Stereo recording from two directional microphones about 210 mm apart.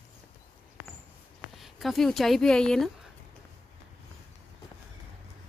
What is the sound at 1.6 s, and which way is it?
A woman's voice, centre (ahead or behind).